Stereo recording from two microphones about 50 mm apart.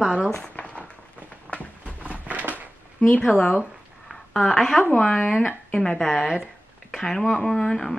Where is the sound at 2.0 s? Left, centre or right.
Right.